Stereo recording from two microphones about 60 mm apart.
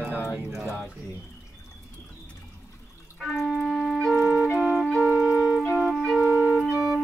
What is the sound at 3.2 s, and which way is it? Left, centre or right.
Music, centre.